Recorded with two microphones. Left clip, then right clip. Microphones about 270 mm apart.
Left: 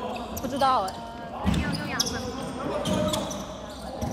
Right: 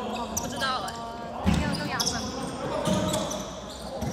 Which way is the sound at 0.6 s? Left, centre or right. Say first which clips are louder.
Left 7 dB; centre.